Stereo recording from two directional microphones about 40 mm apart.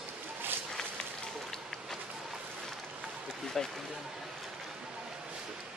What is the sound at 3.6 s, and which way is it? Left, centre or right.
Speech, centre.